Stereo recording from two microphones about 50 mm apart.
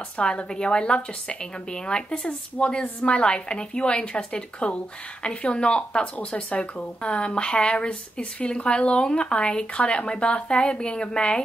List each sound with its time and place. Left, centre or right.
0.2 s speech: centre